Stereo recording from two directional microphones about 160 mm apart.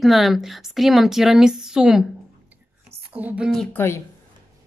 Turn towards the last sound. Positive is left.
turn(degrees=15)  # may be behind; listen again after turning